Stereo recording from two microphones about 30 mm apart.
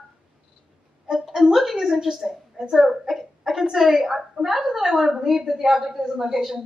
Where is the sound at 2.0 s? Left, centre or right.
Centre.